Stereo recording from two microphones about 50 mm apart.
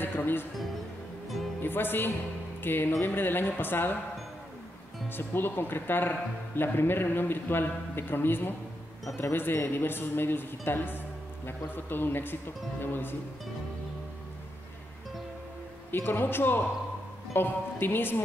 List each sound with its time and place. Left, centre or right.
0.0 s music: left
1.6 s a man's voice: left
5.1 s a man's voice: left
15.9 s a man's voice: left